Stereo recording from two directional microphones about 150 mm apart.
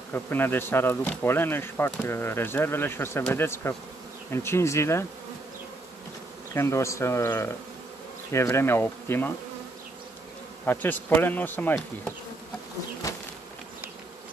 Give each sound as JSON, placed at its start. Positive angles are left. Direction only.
{"t": 0.1, "sound": "speech", "side_deg": 15}
{"t": 6.5, "sound": "speech", "side_deg": 20}
{"t": 10.6, "sound": "speech", "side_deg": 10}